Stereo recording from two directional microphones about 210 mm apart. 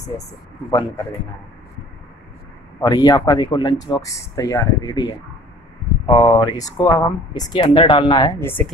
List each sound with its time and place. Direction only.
2.8 s speech: 20° left (ahead or behind)
8.4 s speech: 10° left (ahead or behind)